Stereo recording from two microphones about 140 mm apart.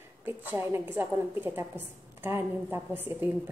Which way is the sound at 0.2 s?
15° right (ahead or behind).